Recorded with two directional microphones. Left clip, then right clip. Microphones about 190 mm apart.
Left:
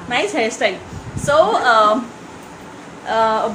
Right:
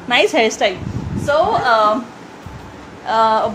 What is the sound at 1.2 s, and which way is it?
Speech, 10° left (ahead or behind).